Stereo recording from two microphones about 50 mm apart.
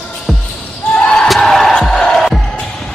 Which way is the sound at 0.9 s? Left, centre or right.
Left.